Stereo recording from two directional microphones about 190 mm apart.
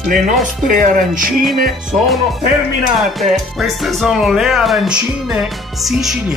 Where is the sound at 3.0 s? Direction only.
Centre (ahead or behind).